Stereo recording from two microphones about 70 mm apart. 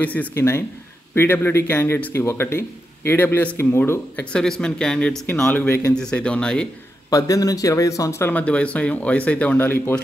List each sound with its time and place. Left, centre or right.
0.0 s speech: left
1.1 s speech: left
4.2 s speech: centre
7.1 s speech: left
8.3 s speech: centre